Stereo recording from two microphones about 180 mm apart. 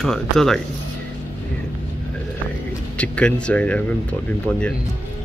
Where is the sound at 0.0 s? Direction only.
Centre (ahead or behind).